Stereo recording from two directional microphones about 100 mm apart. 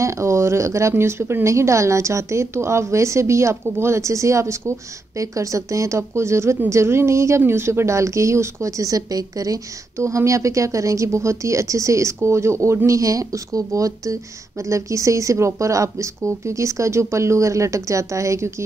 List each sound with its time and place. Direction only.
0.0 s speech: 30° right (ahead or behind)